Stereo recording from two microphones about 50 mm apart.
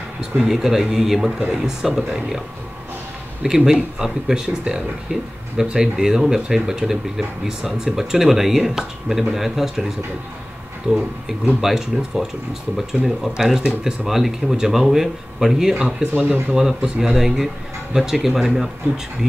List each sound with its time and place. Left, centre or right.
0.4 s speech: centre
3.4 s speech: centre
10.9 s speech: right
11.6 s speech: centre
15.7 s speech: right
16.5 s speech: centre